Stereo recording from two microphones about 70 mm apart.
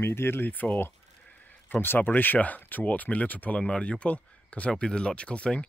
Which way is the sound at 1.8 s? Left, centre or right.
Left.